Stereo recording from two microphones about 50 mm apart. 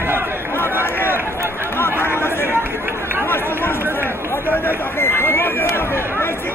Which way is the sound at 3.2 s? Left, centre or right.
Left.